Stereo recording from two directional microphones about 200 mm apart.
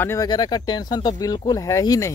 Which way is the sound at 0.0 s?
15° left (ahead or behind).